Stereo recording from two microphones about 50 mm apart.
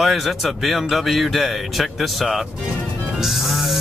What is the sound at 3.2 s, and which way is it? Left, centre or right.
Music, centre.